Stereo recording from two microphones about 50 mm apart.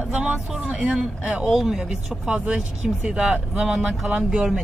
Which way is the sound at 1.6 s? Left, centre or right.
Centre.